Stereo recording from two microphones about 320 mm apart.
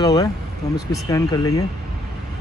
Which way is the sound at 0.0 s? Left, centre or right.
Centre.